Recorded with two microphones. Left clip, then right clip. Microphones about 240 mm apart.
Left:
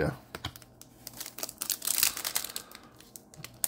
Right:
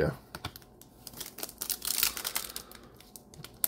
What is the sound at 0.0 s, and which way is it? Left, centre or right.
Computer keyboard, centre.